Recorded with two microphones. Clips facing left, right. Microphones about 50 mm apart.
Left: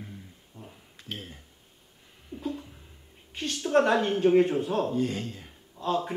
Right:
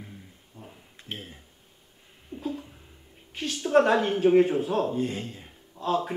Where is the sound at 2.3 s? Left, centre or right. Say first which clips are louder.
Right 1 dB; centre.